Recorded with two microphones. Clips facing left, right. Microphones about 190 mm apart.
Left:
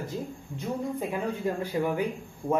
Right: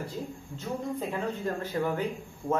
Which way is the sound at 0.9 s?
10° left (ahead or behind).